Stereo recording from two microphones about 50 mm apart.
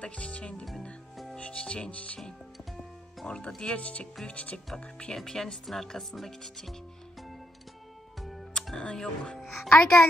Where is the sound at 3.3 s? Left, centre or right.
Centre.